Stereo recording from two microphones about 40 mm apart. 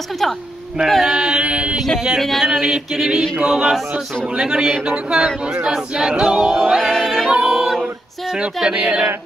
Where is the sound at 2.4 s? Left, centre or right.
Centre.